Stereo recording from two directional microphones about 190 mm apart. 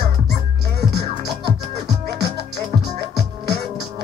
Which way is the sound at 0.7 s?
60° right (ahead or behind).